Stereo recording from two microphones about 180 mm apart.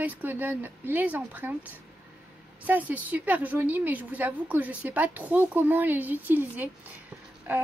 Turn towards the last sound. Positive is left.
turn(degrees=-10)  # may be behind; listen again after turning